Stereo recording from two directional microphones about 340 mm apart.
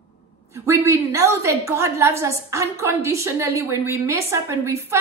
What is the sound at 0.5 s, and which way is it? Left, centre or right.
A woman's voice, centre.